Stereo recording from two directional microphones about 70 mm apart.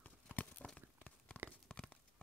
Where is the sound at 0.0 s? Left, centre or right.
Left.